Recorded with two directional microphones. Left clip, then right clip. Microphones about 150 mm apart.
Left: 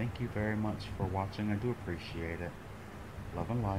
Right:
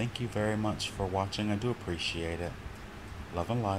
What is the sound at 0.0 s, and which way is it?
Speech, 50° right (ahead or behind).